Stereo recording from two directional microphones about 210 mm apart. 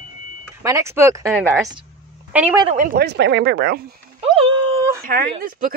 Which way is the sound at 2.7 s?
40° right (ahead or behind).